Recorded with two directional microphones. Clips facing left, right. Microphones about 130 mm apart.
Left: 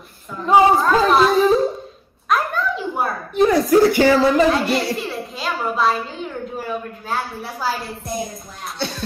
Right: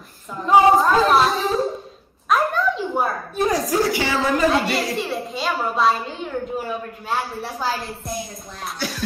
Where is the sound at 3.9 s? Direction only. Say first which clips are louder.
Left 8 dB; 45° left (ahead or behind).